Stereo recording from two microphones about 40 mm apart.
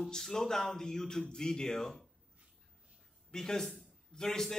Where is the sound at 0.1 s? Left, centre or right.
Centre.